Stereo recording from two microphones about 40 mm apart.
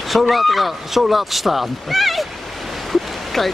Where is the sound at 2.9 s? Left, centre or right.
Centre.